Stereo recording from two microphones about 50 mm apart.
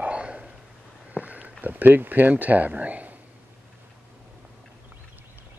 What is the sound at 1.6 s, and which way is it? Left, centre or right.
Speech, right.